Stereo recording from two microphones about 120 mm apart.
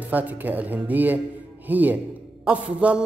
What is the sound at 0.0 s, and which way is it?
A man's voice, 15° right (ahead or behind).